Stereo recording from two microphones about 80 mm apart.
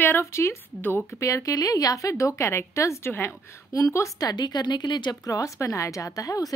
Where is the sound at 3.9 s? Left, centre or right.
Left.